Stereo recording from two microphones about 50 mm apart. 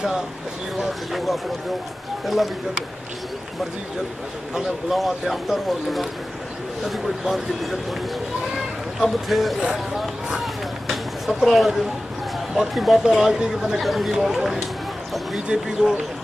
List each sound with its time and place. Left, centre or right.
0.7 s speech: centre
4.9 s speech: centre
7.2 s speech: centre
9.0 s speech: centre
10.4 s a sound: centre
12.5 s speech: centre